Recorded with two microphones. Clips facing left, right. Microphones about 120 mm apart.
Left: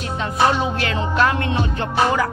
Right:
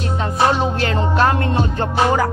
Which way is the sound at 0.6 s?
40° right (ahead or behind).